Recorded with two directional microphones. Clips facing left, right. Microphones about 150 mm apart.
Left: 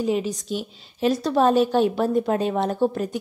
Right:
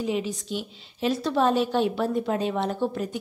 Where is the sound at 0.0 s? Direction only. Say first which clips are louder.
Left 4 dB; 40° left (ahead or behind).